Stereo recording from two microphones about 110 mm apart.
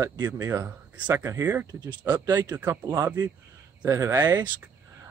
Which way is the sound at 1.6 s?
40° right (ahead or behind).